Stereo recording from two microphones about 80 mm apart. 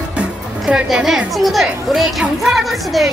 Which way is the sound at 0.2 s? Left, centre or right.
Centre.